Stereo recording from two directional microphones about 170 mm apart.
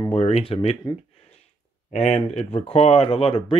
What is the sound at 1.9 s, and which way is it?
Speech, 40° left (ahead or behind).